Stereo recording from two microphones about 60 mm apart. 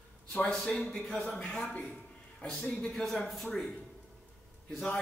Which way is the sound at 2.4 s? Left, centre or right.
Centre.